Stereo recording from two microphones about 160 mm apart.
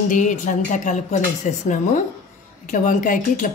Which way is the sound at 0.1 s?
50° left (ahead or behind).